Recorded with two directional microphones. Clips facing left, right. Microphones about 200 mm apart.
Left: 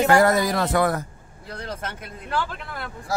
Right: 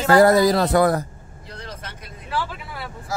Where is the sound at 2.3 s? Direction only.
5° right (ahead or behind).